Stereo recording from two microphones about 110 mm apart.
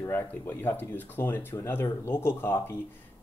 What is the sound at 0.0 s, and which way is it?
Speech, 20° left (ahead or behind).